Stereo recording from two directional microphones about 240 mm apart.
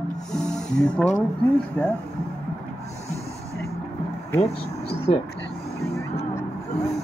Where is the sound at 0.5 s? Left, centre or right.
Centre.